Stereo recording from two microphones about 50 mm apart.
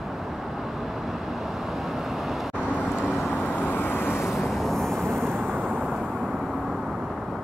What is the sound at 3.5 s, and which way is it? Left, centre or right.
Vehicle, left.